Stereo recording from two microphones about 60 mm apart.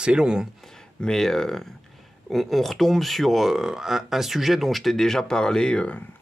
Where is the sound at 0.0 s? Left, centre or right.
Centre.